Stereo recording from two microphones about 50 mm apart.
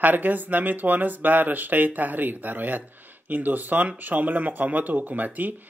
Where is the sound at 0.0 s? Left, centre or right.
Right.